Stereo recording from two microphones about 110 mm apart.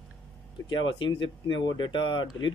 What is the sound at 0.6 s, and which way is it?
Speech, 40° left (ahead or behind).